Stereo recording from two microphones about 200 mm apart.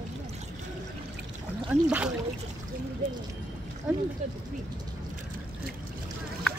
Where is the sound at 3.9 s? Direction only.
5° right (ahead or behind).